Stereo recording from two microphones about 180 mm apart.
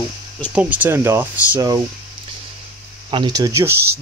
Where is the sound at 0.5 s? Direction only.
5° right (ahead or behind).